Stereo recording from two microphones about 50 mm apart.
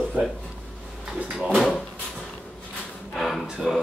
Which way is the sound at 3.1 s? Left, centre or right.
Centre.